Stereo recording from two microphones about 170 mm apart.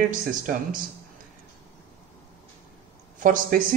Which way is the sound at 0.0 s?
50° right (ahead or behind).